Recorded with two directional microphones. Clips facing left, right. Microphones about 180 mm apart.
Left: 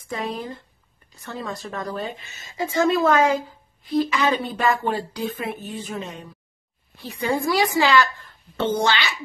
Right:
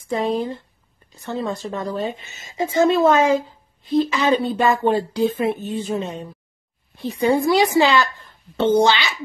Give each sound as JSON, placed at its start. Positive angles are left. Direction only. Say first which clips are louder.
{"t": 0.1, "sound": "speech", "louder": "right 7 dB", "side_deg": -25}